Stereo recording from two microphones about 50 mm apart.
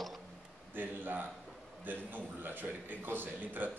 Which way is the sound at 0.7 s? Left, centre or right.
Right.